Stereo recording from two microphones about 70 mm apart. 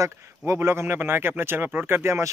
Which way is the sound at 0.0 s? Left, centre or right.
Right.